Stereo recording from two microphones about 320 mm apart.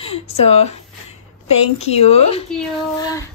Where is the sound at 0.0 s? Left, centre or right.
Centre.